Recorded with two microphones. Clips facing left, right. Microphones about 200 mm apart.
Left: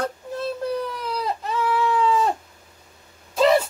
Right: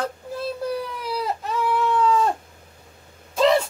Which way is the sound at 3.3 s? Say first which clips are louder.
Left 1 dB; centre (ahead or behind).